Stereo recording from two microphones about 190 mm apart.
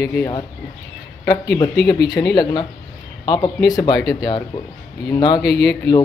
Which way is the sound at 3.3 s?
20° left (ahead or behind).